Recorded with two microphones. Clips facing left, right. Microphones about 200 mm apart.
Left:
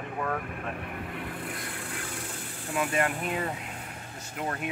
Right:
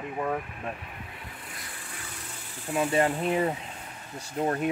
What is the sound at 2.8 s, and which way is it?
Speech, 25° right (ahead or behind).